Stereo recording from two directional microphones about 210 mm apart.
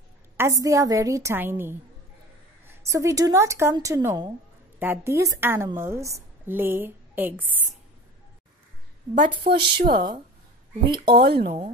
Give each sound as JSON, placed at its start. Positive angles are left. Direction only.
{"t": 0.4, "sound": "a woman's voice", "side_deg": -15}
{"t": 9.4, "sound": "speech", "side_deg": -50}
{"t": 11.1, "sound": "speech", "side_deg": -50}